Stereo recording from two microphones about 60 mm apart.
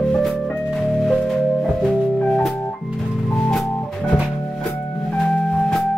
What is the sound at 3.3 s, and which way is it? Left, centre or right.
Organ, centre.